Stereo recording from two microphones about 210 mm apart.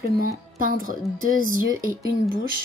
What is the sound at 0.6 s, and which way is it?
A child's voice, 40° right (ahead or behind).